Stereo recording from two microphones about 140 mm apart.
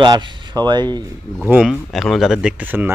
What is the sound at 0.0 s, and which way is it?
Speech, 35° right (ahead or behind).